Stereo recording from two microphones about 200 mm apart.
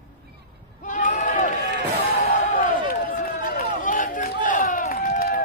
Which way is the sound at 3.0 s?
45° left (ahead or behind).